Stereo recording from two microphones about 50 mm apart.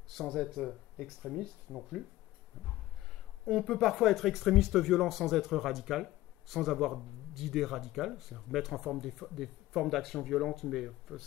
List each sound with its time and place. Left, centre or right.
0.1 s speech: centre
3.4 s speech: centre